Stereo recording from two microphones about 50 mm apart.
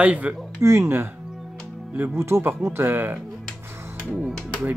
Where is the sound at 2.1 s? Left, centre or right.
Right.